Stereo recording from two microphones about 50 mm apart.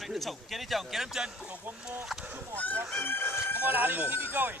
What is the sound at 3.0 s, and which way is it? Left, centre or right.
Speech, left.